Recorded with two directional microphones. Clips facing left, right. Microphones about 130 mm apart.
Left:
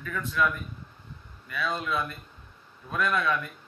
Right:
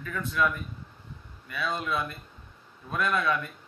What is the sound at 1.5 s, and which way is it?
Speech, 20° right (ahead or behind).